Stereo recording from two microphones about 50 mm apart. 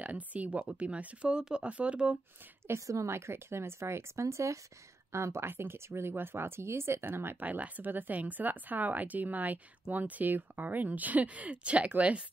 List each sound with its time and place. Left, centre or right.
0.0 s speech: right
2.7 s a woman's voice: right
3.1 s speech: right
5.1 s speech: right
5.5 s speech: right
7.4 s speech: right